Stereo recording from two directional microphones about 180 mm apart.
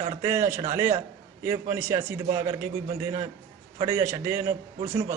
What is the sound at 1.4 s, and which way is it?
A man's voice, 15° right (ahead or behind).